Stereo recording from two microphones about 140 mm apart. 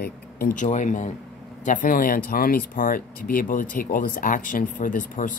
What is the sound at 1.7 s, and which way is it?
Speech, 70° left (ahead or behind).